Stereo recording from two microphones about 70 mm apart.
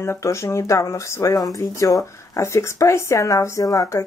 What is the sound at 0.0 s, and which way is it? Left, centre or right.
Speech, left.